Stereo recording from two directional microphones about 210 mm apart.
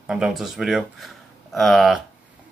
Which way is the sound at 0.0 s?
5° right (ahead or behind).